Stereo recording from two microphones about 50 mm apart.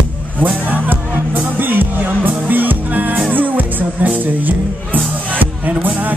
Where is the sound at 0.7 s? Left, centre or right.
Right.